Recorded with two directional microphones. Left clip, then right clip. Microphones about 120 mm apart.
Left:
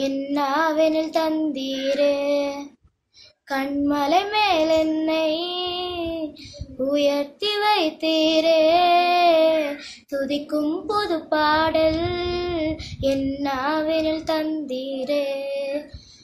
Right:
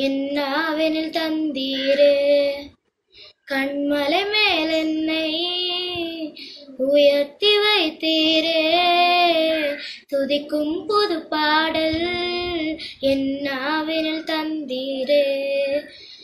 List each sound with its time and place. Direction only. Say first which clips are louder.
0.0 s child singing: right 1 dB; 45° left (ahead or behind)
10.9 s child singing: right 3 dB; 45° left (ahead or behind)